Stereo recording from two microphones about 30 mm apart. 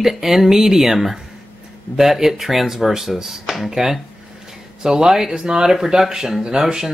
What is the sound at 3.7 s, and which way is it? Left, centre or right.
Speech, centre.